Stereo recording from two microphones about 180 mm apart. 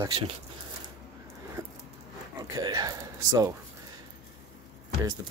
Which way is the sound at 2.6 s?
20° right (ahead or behind).